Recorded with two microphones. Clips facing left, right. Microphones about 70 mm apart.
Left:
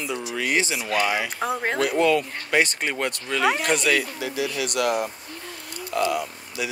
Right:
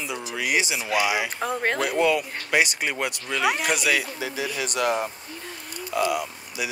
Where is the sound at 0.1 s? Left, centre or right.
Centre.